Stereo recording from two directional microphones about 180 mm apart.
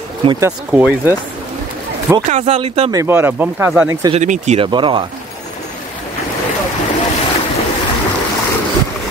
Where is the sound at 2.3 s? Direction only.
35° right (ahead or behind).